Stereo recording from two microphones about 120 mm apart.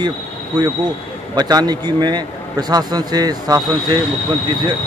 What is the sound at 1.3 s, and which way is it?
Speech, 35° right (ahead or behind).